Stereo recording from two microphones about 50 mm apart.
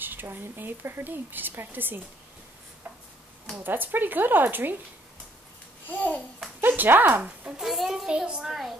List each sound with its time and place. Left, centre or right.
0.0 s a woman's voice: right
3.5 s speech: right
5.9 s babbling: left
6.8 s speech: right
7.6 s a child's voice: centre
8.1 s a child's voice: centre